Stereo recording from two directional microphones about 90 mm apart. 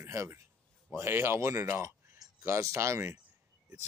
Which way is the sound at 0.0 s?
30° right (ahead or behind).